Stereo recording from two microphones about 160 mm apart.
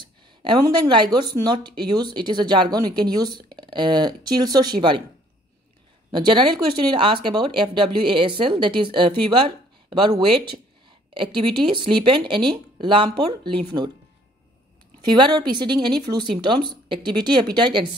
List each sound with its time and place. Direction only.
0.0 s a woman's voice: 30° right (ahead or behind)
6.1 s speech: 30° right (ahead or behind)
15.0 s a woman's voice: 30° right (ahead or behind)